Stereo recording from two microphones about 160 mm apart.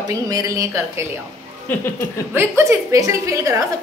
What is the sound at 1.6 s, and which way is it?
Speech, 10° left (ahead or behind).